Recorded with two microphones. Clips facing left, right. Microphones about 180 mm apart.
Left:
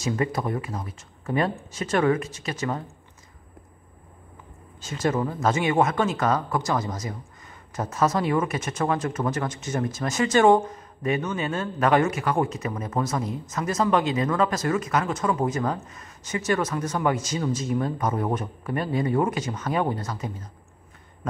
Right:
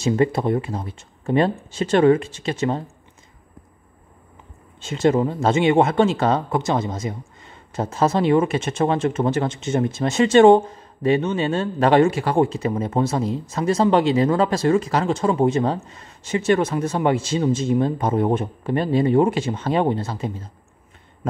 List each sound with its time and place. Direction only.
0.0 s speech: 30° right (ahead or behind)
4.7 s speech: 25° right (ahead or behind)